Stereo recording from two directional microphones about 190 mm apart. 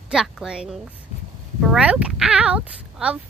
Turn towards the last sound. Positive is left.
turn(degrees=-5)  # may be behind; listen again after turning